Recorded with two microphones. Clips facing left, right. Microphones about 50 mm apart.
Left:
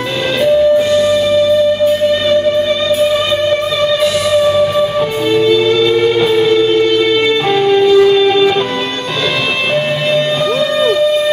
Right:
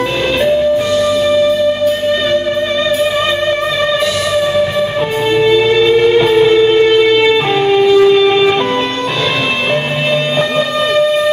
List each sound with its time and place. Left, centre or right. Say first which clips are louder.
5.3 s music: right 1 dB; right
7.5 s music: left 3 dB; centre